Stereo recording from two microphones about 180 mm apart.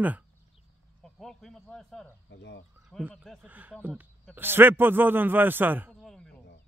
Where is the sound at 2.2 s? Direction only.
75° left (ahead or behind).